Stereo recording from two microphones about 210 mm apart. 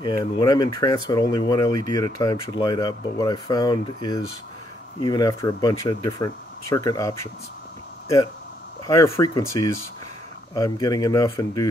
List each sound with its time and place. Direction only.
0.0 s speech: 20° left (ahead or behind)
8.8 s speech: 15° left (ahead or behind)